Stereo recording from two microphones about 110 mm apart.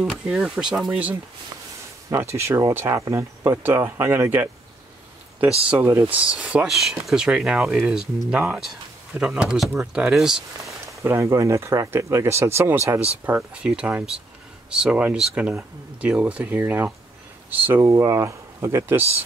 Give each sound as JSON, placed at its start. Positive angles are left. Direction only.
{"t": 0.0, "sound": "speech", "side_deg": 0}
{"t": 2.0, "sound": "speech", "side_deg": -25}
{"t": 5.7, "sound": "speech", "side_deg": -20}
{"t": 10.9, "sound": "speech", "side_deg": -25}
{"t": 13.2, "sound": "speech", "side_deg": -10}